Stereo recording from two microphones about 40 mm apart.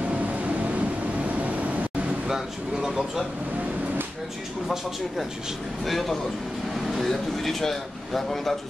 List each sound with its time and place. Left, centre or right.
0.1 s vehicle: right
2.2 s speech: centre
5.9 s a man's voice: centre